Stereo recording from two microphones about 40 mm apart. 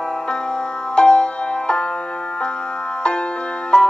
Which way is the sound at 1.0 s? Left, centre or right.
Left.